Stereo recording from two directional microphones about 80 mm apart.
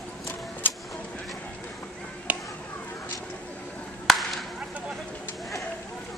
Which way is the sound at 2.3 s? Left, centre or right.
Centre.